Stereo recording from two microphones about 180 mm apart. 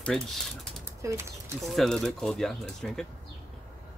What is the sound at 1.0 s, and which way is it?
Speech, 15° right (ahead or behind).